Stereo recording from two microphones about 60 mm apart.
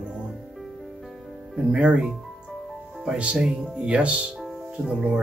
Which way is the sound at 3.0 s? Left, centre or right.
Centre.